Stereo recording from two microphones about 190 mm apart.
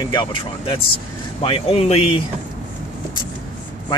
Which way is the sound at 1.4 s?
30° left (ahead or behind).